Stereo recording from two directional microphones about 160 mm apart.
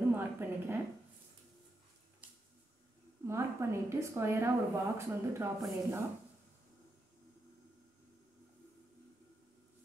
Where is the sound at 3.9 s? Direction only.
15° right (ahead or behind).